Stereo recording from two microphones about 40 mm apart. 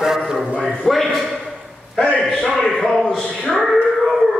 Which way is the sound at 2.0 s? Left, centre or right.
Left.